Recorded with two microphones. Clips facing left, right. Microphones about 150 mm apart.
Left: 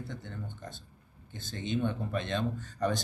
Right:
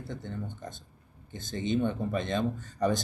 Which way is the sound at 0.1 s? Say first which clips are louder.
Right 4 dB; 15° right (ahead or behind).